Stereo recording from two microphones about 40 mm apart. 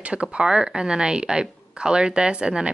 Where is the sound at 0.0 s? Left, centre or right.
Right.